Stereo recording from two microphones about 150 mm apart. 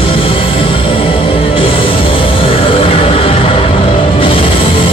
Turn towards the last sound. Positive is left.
turn(degrees=35)  # may be behind; listen again after turning